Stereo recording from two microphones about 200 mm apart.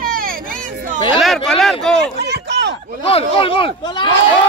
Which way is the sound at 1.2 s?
Centre (ahead or behind).